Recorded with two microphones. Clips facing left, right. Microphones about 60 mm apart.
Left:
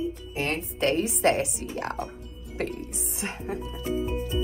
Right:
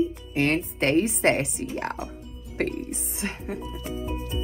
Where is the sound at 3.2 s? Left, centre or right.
Left.